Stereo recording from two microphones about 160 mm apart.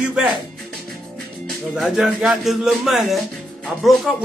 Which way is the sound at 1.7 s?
Centre (ahead or behind).